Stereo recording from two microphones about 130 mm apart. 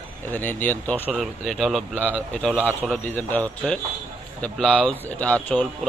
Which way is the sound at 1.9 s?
15° right (ahead or behind).